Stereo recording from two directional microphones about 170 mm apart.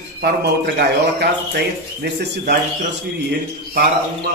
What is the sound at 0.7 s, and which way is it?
Speech, 75° right (ahead or behind).